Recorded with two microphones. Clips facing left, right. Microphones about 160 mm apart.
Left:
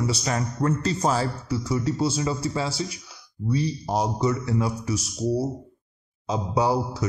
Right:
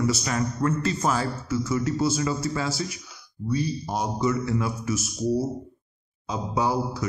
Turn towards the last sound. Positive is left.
turn(degrees=35)  # may be behind; listen again after turning